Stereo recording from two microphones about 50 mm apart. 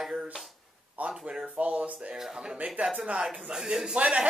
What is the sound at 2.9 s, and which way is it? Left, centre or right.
Speech, right.